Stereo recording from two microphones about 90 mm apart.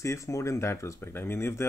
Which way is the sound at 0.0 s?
35° left (ahead or behind).